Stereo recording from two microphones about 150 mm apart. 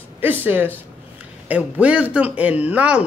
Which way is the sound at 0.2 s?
15° right (ahead or behind).